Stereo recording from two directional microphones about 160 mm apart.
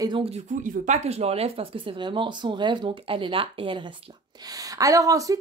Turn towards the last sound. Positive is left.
turn(degrees=-20)  # may be behind; listen again after turning